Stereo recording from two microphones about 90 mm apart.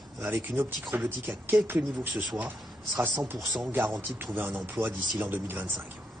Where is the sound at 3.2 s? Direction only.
25° right (ahead or behind).